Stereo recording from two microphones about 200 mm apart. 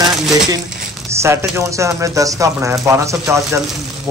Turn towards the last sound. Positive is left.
turn(degrees=-15)  # may be behind; listen again after turning